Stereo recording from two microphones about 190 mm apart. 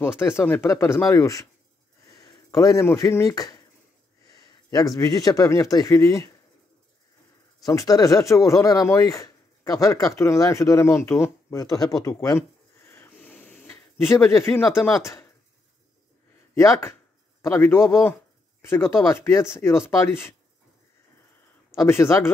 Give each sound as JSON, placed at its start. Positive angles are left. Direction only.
{"t": 0.2, "sound": "speech", "side_deg": 15}
{"t": 4.3, "sound": "a sound", "side_deg": 20}
{"t": 4.9, "sound": "speech", "side_deg": 20}
{"t": 7.6, "sound": "speech", "side_deg": 20}
{"t": 12.0, "sound": "a sound", "side_deg": 15}
{"t": 16.5, "sound": "speech", "side_deg": 15}
{"t": 21.7, "sound": "speech", "side_deg": 15}